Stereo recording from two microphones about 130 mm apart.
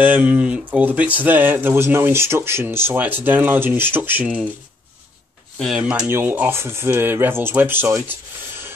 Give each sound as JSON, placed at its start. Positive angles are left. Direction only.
{"t": 0.0, "sound": "speech", "side_deg": -15}
{"t": 5.8, "sound": "speech", "side_deg": -10}